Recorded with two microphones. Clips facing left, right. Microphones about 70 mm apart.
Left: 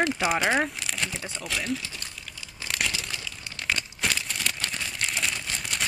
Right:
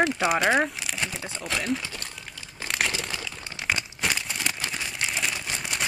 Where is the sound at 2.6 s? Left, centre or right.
Right.